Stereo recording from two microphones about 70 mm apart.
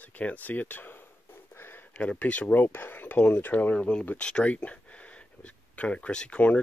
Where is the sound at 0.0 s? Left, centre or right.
Left.